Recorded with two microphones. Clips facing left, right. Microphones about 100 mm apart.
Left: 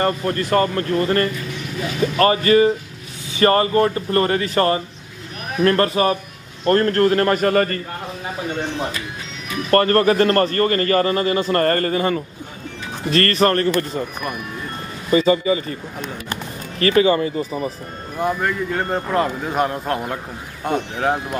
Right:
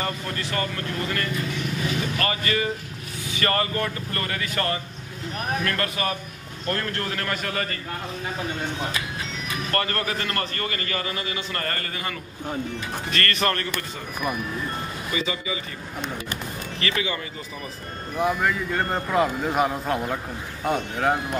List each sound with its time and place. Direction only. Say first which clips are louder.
0.0 s a man's voice: left 9 dB; 45° left (ahead or behind)
9.7 s a man's voice: left 13 dB; 45° left (ahead or behind)
15.1 s speech: left 14 dB; 40° left (ahead or behind)
16.8 s speech: left 13 dB; 40° left (ahead or behind)
18.1 s speech: left 2 dB; centre (ahead or behind)